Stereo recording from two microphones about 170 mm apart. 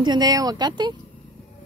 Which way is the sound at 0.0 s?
25° right (ahead or behind).